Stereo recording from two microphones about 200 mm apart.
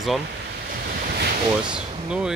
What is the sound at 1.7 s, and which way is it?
Speech, 5° right (ahead or behind).